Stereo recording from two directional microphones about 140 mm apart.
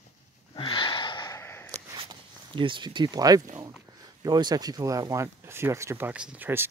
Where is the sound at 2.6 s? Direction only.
35° right (ahead or behind).